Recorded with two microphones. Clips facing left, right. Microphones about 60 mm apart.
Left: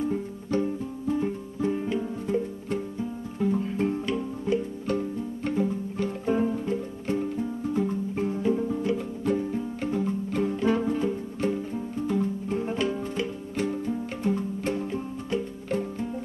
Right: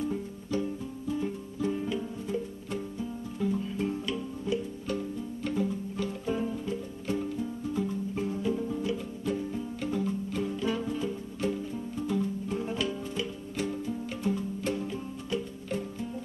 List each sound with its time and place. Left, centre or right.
0.0 s music: left
8.9 s music: left